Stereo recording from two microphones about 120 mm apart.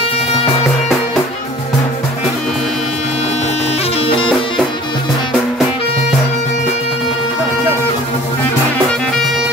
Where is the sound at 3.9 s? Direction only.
50° left (ahead or behind).